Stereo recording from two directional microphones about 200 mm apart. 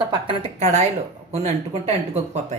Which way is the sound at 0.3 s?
30° right (ahead or behind).